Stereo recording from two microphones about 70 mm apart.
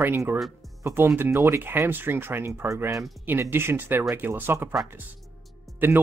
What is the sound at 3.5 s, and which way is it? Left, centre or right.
Speech, right.